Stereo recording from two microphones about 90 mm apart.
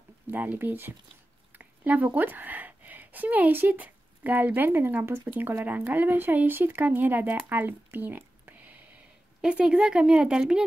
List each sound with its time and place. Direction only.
0.3 s speech: 20° right (ahead or behind)
1.5 s a sound: 20° right (ahead or behind)
2.1 s speech: 20° right (ahead or behind)